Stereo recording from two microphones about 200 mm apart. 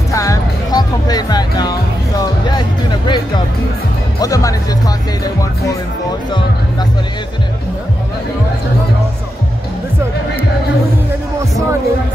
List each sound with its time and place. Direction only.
0.1 s music: 15° left (ahead or behind)
4.2 s speech: 15° left (ahead or behind)